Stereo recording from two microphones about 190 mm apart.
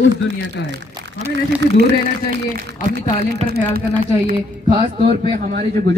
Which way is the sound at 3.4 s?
55° right (ahead or behind).